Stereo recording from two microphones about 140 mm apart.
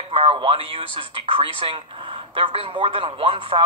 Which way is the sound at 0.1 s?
40° right (ahead or behind).